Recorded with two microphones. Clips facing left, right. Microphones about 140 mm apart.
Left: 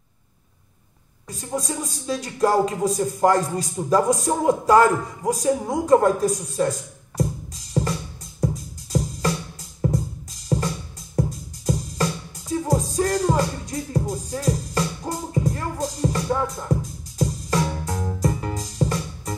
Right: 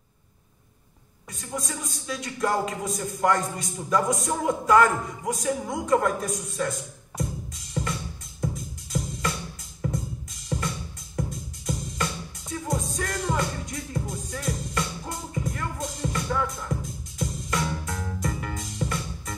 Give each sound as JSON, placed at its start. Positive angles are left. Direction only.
{"t": 1.3, "sound": "speech", "side_deg": 30}
{"t": 5.5, "sound": "music", "side_deg": 30}